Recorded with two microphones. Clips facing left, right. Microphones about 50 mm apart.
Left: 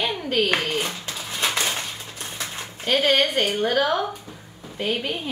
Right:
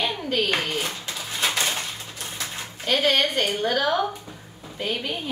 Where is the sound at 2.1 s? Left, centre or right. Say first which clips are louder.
Left 1 dB; left.